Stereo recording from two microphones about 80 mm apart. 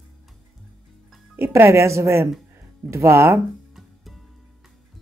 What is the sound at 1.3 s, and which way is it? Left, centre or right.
Speech, right.